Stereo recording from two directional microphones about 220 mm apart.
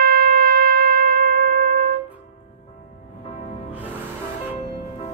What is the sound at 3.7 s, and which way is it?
Music, 5° right (ahead or behind).